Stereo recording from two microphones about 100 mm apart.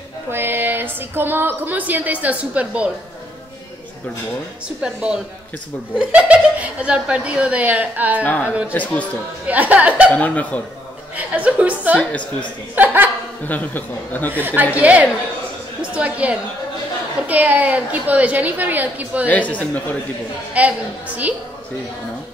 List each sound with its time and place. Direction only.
0.3 s a woman's voice: 20° right (ahead or behind)
4.8 s a woman's voice: 5° right (ahead or behind)
8.2 s speech: 20° left (ahead or behind)
9.5 s a woman's voice: 15° right (ahead or behind)
10.1 s speech: 15° left (ahead or behind)
11.1 s a woman's voice: 15° right (ahead or behind)
13.5 s speech: 15° left (ahead or behind)
14.4 s a woman's voice: 15° right (ahead or behind)
19.2 s speech: 15° left (ahead or behind)
20.5 s a woman's voice: 15° right (ahead or behind)